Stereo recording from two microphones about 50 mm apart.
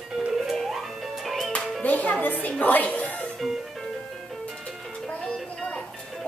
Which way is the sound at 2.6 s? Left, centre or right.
Left.